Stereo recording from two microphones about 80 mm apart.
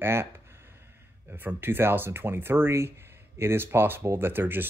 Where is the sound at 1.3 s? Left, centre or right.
Right.